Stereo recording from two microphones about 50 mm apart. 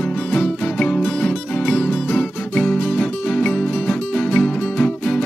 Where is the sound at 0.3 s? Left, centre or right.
Centre.